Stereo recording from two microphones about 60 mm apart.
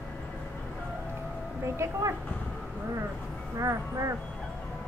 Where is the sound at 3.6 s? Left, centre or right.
Right.